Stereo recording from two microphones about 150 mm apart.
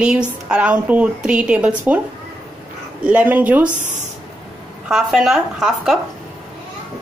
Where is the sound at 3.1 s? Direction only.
10° right (ahead or behind).